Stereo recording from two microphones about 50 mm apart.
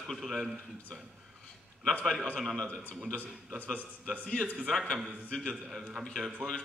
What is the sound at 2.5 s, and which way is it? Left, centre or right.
Speech, centre.